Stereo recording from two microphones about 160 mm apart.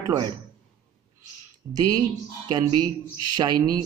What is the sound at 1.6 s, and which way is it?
Speech, 10° right (ahead or behind).